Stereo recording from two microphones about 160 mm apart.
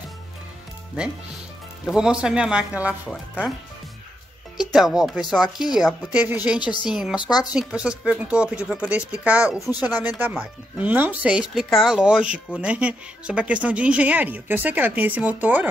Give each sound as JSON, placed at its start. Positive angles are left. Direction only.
{"t": 1.9, "sound": "speech", "side_deg": -5}
{"t": 4.6, "sound": "speech", "side_deg": -5}
{"t": 7.2, "sound": "speech", "side_deg": 25}
{"t": 7.5, "sound": "speech", "side_deg": -5}